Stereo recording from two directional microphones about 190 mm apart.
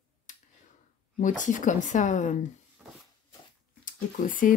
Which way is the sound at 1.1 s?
40° left (ahead or behind).